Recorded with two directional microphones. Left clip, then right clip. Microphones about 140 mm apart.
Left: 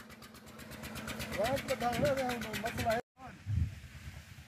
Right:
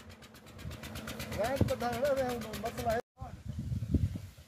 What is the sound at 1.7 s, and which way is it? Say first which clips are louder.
Speech: right 1 dB; 5° right (ahead or behind).